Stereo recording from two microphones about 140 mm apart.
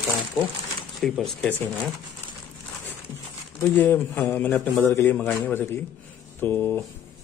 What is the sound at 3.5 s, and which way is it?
Mantra, 15° left (ahead or behind).